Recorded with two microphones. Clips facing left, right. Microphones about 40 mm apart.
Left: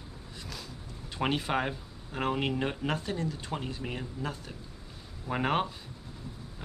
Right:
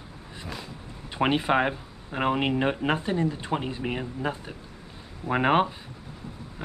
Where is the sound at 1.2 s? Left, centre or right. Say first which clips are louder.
Right 7 dB; right.